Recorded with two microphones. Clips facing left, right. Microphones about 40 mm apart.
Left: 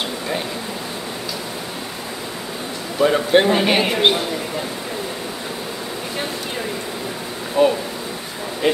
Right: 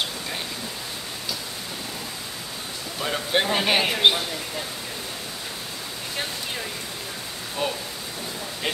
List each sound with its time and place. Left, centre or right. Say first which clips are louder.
3.0 s a man's voice: left 10 dB; centre
7.6 s speech: left 12 dB; centre